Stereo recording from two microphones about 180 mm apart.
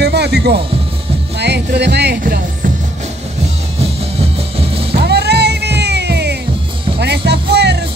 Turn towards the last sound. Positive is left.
turn(degrees=-70)  # may be behind; listen again after turning